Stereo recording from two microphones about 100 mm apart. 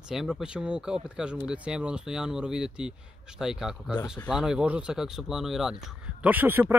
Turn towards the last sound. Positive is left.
turn(degrees=-20)  # may be behind; listen again after turning